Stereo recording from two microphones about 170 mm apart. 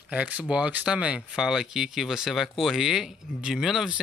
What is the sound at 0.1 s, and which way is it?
Speech, 5° right (ahead or behind).